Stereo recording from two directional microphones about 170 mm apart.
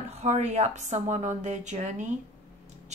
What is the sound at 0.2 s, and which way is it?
A woman's voice, 40° right (ahead or behind).